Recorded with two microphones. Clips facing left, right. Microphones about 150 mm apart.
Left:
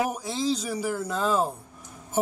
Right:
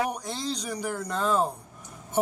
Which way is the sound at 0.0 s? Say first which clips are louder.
Left 3 dB; 5° left (ahead or behind).